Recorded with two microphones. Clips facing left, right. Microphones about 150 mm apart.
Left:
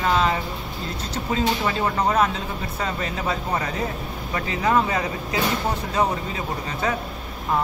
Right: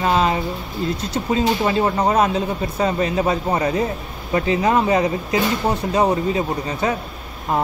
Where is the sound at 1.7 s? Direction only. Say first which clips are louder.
Right 4 dB; 20° right (ahead or behind).